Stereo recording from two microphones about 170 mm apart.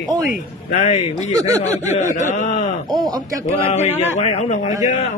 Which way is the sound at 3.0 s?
25° right (ahead or behind).